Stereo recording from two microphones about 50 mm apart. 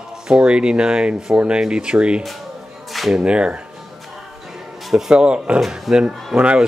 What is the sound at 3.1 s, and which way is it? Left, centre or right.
Speech, centre.